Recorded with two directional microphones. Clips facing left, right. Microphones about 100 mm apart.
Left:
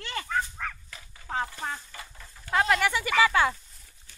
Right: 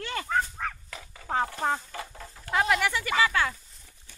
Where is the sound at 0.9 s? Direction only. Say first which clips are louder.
Right 5 dB; 90° right.